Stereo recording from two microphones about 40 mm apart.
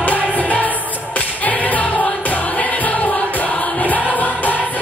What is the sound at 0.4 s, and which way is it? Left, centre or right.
Music, left.